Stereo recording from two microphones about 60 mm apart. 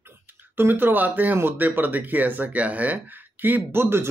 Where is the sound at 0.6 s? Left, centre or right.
Right.